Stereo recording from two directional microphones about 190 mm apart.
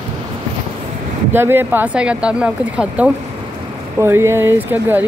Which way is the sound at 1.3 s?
10° right (ahead or behind).